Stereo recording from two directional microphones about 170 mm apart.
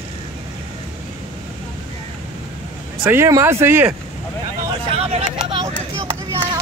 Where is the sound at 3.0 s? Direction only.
15° right (ahead or behind).